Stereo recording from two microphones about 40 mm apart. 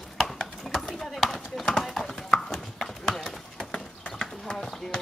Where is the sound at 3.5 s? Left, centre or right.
Centre.